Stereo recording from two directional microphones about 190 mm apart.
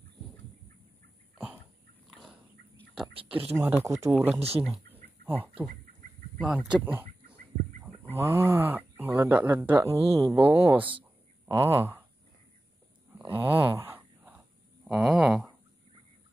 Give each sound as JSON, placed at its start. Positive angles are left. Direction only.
{"t": 2.0, "sound": "fowl", "side_deg": 0}
{"t": 3.2, "sound": "speech", "side_deg": -30}
{"t": 3.5, "sound": "speech", "side_deg": -10}
{"t": 4.4, "sound": "speech", "side_deg": -30}
{"t": 5.2, "sound": "speech", "side_deg": -10}
{"t": 10.9, "sound": "a sound", "side_deg": -25}
{"t": 11.5, "sound": "speech", "side_deg": -10}
{"t": 13.3, "sound": "a sound", "side_deg": -10}
{"t": 14.9, "sound": "speech", "side_deg": -5}